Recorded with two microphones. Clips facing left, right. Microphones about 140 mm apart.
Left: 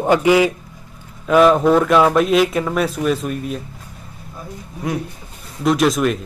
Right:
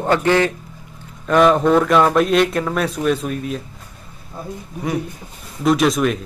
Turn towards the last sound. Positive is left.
turn(degrees=0)  # may be behind; listen again after turning